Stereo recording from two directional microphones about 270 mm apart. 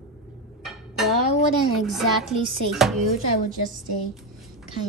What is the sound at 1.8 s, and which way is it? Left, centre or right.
A woman's voice, centre.